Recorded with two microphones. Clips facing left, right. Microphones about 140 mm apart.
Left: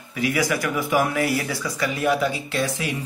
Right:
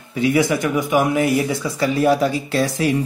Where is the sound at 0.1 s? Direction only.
25° right (ahead or behind).